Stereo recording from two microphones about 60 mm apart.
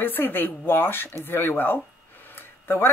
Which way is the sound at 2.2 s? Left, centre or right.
Left.